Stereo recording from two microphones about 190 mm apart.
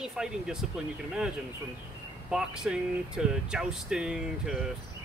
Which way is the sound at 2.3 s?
5° right (ahead or behind).